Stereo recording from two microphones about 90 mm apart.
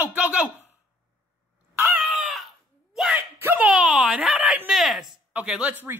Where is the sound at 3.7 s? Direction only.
5° right (ahead or behind).